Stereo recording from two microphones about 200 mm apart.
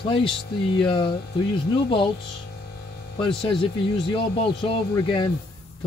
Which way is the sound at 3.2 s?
25° left (ahead or behind).